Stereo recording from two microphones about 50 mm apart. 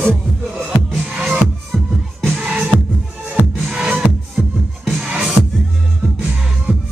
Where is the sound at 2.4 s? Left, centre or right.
Right.